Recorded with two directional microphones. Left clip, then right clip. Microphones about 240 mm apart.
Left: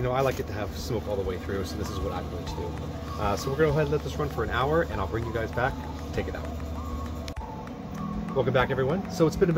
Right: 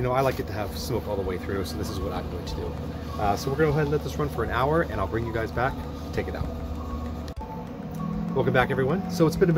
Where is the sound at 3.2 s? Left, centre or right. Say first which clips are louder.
Right 1 dB; centre.